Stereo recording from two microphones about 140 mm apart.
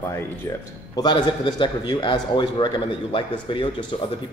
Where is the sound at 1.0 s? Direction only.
30° left (ahead or behind).